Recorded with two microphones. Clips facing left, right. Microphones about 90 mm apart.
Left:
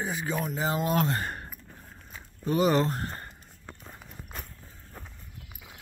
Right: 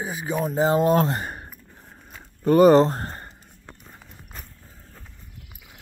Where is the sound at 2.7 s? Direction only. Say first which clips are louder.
Right 9 dB; 35° right (ahead or behind).